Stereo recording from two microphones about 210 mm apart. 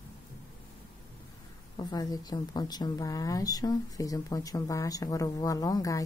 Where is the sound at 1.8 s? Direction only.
20° left (ahead or behind).